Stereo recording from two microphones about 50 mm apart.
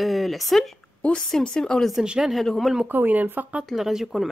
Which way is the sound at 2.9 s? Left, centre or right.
Right.